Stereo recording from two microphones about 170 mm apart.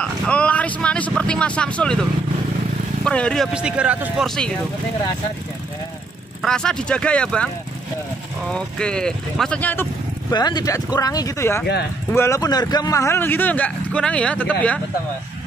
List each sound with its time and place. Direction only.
0.0 s speech: 5° left (ahead or behind)
3.5 s speech: 5° right (ahead or behind)
6.4 s speech: 5° left (ahead or behind)
8.5 s speech: 5° left (ahead or behind)
10.3 s speech: 25° left (ahead or behind); by 14.8 s 10° left (ahead or behind)